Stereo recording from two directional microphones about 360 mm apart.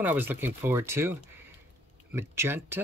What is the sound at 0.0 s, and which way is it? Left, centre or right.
Speech, centre.